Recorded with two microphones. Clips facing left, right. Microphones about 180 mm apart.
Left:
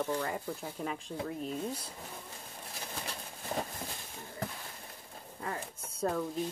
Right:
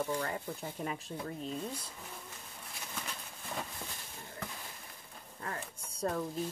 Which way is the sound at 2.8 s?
35° left (ahead or behind).